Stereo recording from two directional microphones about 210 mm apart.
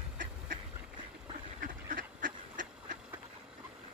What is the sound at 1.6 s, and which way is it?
Duck, 40° right (ahead or behind).